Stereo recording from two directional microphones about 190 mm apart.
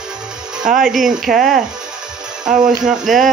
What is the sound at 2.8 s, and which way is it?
Speech, centre (ahead or behind).